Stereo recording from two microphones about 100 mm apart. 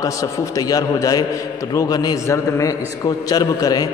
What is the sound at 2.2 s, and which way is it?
A man's voice, 30° left (ahead or behind).